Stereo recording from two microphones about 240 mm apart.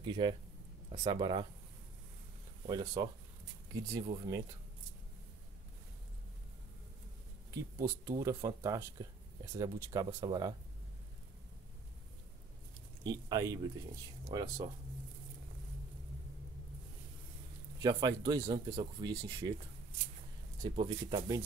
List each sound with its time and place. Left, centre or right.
0.0 s speech: centre
2.6 s speech: centre
8.0 s speech: centre
13.0 s speech: centre
17.8 s speech: centre
20.6 s speech: centre